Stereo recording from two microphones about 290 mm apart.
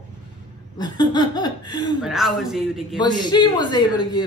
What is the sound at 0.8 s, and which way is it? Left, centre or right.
A woman's voice, centre.